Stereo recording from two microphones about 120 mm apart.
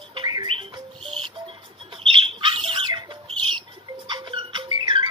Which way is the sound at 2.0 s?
45° right (ahead or behind).